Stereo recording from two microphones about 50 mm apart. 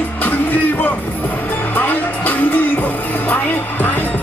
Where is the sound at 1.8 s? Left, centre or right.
Left.